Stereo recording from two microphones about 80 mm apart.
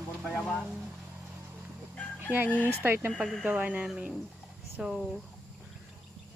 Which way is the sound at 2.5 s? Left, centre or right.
Left.